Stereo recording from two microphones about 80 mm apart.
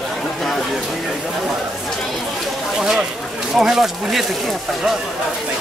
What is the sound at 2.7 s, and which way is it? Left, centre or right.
Speech, centre.